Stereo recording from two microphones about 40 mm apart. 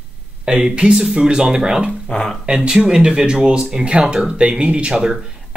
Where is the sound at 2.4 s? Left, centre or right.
Right.